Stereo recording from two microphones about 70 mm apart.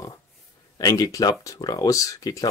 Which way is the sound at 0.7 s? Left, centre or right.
Left.